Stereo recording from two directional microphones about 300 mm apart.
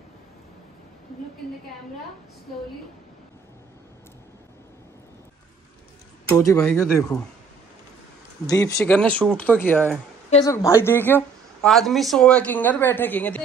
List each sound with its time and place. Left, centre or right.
6.3 s speech: centre
8.5 s speech: centre